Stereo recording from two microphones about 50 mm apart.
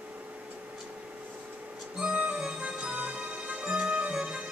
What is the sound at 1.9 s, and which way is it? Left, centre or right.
Music, right.